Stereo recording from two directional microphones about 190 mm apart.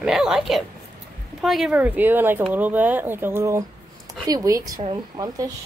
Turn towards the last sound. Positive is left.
turn(degrees=-20)  # may be behind; listen again after turning